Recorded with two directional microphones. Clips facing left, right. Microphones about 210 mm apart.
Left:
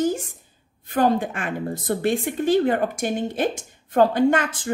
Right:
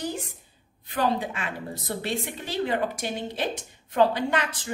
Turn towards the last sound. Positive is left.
turn(degrees=50)  # may be behind; listen again after turning